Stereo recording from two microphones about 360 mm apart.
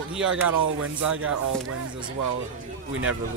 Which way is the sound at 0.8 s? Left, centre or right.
Right.